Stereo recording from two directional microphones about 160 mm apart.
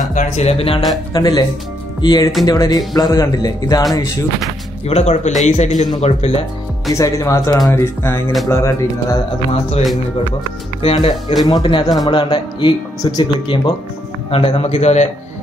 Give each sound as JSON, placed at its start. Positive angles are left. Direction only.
{"t": 0.1, "sound": "a man's voice", "side_deg": 45}
{"t": 1.1, "sound": "speech", "side_deg": 30}
{"t": 4.8, "sound": "speech", "side_deg": 45}
{"t": 6.9, "sound": "speech", "side_deg": 20}
{"t": 10.8, "sound": "a man's voice", "side_deg": 35}